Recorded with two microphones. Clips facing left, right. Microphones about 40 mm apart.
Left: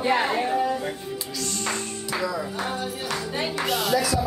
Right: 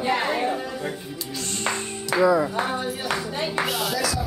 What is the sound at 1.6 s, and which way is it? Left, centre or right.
Speech, right.